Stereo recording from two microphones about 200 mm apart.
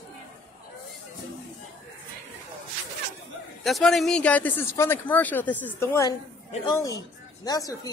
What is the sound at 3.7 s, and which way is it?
Speech, centre (ahead or behind).